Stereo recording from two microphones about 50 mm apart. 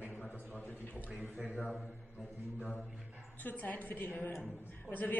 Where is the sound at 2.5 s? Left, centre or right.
Left.